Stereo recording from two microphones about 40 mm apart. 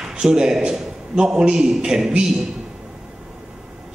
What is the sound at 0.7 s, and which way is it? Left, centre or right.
A man's voice, centre.